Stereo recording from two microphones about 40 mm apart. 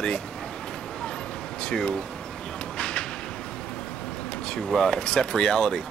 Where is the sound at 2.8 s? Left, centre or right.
Left.